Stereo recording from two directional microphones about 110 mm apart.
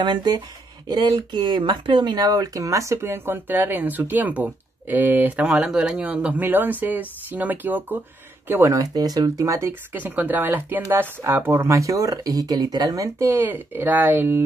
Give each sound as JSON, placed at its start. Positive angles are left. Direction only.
{"t": 0.0, "sound": "speech", "side_deg": -40}
{"t": 1.4, "sound": "speech", "side_deg": -45}
{"t": 8.7, "sound": "speech", "side_deg": -35}